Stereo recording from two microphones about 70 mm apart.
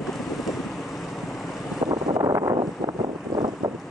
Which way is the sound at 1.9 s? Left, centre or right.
Right.